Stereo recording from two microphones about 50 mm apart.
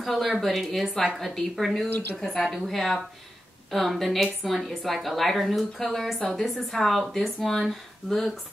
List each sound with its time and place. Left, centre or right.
0.0 s a woman's voice: centre
1.9 s speech: left
2.1 s a woman's voice: centre
6.1 s a woman's voice: centre
6.5 s a woman's voice: centre